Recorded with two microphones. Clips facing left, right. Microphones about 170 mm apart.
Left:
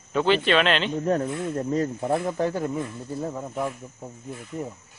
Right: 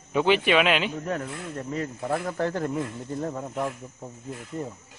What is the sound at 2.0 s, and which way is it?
Speech, 25° left (ahead or behind).